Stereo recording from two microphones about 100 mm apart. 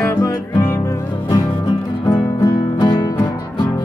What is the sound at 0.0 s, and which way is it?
Music, 30° left (ahead or behind).